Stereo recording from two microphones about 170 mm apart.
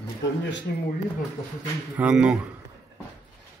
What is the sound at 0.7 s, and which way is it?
Speech, 70° left (ahead or behind).